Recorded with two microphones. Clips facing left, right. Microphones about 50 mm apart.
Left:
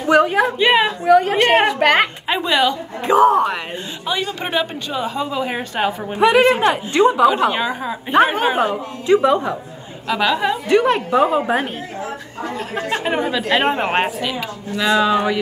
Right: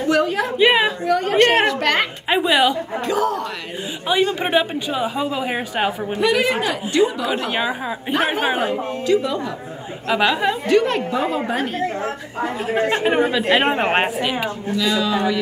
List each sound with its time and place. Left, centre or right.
0.1 s a sound: centre
0.6 s speech: centre
1.0 s a woman's voice: centre
1.8 s a woman's voice: centre
2.2 s speech: centre
3.1 s a woman's voice: left
4.1 s speech: centre
6.1 s a woman's voice: left
7.5 s speech: centre
9.0 s a woman's voice: left
10.0 s speech: centre
10.7 s a woman's voice: centre
12.9 s speech: centre
14.8 s a woman's voice: left